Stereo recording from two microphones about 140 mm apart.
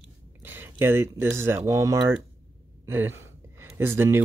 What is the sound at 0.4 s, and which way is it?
Speech, 15° right (ahead or behind).